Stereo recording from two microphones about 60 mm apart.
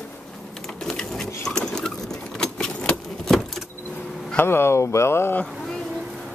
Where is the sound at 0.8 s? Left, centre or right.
Centre.